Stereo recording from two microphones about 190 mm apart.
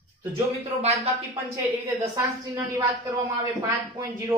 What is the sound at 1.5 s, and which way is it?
Speech, 15° right (ahead or behind).